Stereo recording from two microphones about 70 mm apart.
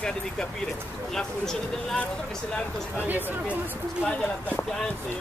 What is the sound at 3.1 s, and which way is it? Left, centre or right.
Speech, right.